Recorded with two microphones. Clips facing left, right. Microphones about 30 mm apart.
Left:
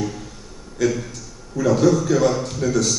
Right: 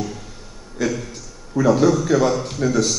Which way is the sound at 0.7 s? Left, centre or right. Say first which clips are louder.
Left 2 dB; centre.